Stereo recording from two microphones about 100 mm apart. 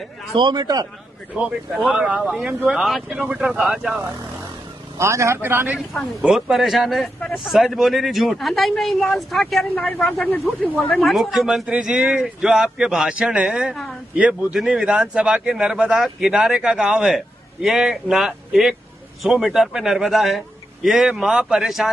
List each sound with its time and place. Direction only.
0.4 s a man's voice: 45° right (ahead or behind)
1.3 s speech: 10° right (ahead or behind)
4.9 s speech: 30° right (ahead or behind)
6.2 s speech: 5° right (ahead or behind); by 11.0 s 10° left (ahead or behind)
11.0 s a man's voice: centre (ahead or behind)